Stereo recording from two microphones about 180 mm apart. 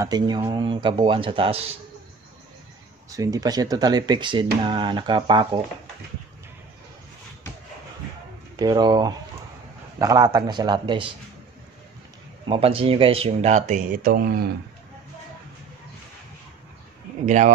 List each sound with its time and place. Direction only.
0.0 s speech: 20° right (ahead or behind)
3.1 s speech: 20° right (ahead or behind)
8.5 s speech: 20° right (ahead or behind)
12.4 s speech: 30° right (ahead or behind); by 14.4 s 55° right (ahead or behind)